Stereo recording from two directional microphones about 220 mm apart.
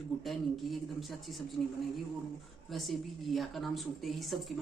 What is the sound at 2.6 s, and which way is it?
Speech, centre (ahead or behind).